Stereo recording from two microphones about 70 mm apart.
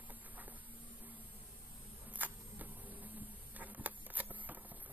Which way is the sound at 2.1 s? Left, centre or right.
Right.